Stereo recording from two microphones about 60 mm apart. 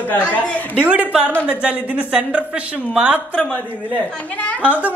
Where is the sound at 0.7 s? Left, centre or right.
Right.